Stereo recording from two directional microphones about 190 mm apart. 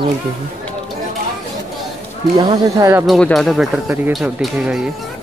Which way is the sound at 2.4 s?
20° right (ahead or behind).